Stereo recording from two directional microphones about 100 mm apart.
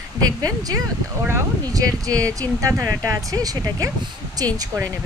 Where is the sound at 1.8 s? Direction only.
35° right (ahead or behind).